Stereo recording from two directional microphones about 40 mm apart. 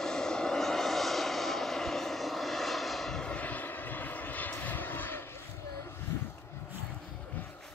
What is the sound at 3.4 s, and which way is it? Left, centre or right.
Vehicle, left.